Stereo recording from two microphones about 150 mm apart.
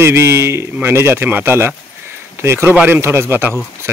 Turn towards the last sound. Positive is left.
turn(degrees=-15)  # may be behind; listen again after turning